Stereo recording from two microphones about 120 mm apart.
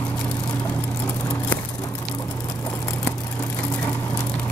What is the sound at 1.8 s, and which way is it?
Patter, 25° left (ahead or behind).